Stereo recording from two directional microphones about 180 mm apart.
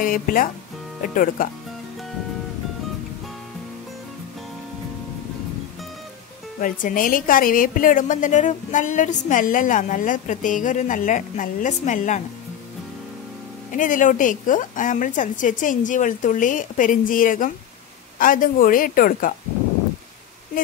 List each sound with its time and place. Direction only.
0.0 s a woman's voice: 50° left (ahead or behind)
6.6 s a woman's voice: 50° left (ahead or behind)
13.7 s a woman's voice: 45° left (ahead or behind)